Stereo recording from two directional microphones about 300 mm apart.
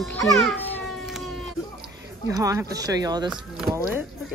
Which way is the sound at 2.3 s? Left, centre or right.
Centre.